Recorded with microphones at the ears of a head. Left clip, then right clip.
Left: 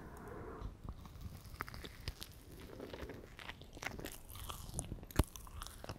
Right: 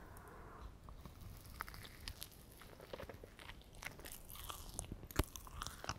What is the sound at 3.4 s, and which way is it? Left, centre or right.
Walk, left.